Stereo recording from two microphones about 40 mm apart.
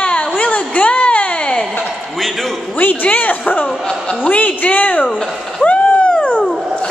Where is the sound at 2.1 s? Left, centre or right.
Centre.